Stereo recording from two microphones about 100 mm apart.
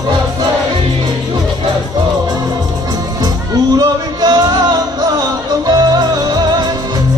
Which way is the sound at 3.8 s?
40° right (ahead or behind).